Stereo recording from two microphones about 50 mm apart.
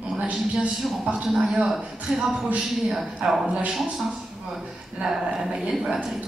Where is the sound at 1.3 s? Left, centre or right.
Centre.